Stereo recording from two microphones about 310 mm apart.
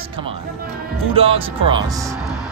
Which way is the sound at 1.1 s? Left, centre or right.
Centre.